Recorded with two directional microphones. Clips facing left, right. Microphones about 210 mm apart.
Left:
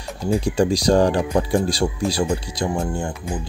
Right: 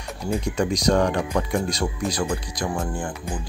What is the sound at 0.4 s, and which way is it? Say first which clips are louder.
Speech: left 5 dB; 30° left (ahead or behind).